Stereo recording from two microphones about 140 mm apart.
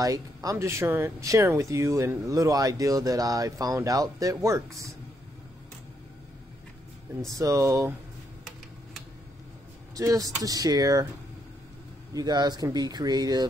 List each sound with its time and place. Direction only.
0.0 s speech: 25° right (ahead or behind)
7.3 s speech: 25° right (ahead or behind)
9.9 s speech: 25° right (ahead or behind)
12.1 s speech: 25° right (ahead or behind)